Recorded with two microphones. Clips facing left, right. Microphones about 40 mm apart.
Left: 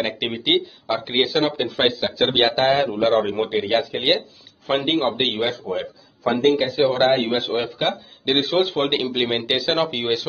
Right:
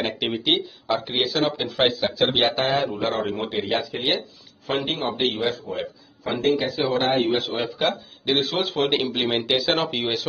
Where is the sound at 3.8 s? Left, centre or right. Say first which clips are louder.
Left 4 dB; left.